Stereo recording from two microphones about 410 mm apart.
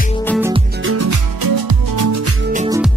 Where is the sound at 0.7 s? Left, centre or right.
Right.